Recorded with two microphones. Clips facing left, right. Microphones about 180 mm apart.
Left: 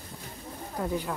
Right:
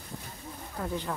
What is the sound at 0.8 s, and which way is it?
Speech, 10° left (ahead or behind).